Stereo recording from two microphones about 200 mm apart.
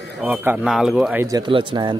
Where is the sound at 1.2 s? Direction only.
20° right (ahead or behind).